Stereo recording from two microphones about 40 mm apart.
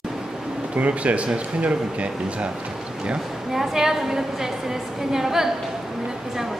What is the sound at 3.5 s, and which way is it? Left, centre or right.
A woman's voice, centre.